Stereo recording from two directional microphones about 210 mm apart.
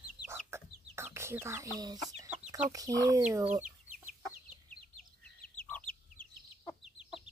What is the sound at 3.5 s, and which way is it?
Chicken, 10° right (ahead or behind).